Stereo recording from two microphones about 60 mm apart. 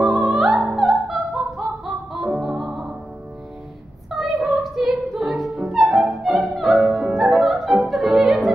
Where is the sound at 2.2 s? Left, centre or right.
Centre.